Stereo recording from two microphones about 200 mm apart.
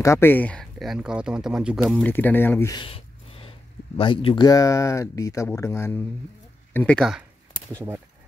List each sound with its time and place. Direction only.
0.0 s speech: 15° left (ahead or behind); by 2.0 s 5° right (ahead or behind)
2.0 s speech: 10° left (ahead or behind)
2.8 s speech: 30° left (ahead or behind); by 7.2 s centre (ahead or behind)